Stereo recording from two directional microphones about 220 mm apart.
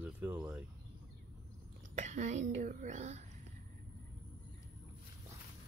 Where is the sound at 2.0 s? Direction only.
35° right (ahead or behind).